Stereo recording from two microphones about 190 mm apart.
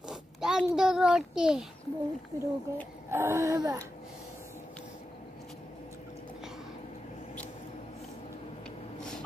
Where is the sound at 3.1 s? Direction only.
15° right (ahead or behind).